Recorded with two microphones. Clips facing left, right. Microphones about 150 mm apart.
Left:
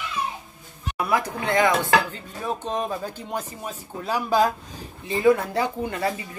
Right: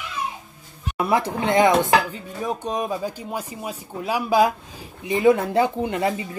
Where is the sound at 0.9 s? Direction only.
25° right (ahead or behind).